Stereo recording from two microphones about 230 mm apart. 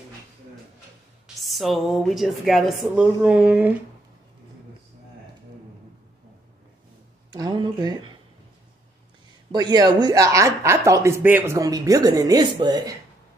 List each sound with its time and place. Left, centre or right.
1.2 s a woman's voice: centre
7.2 s speech: centre
9.5 s speech: centre